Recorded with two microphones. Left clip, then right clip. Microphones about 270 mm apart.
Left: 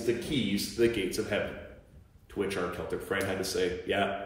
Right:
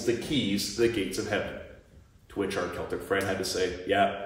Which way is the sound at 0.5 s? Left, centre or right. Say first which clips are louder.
Even; centre.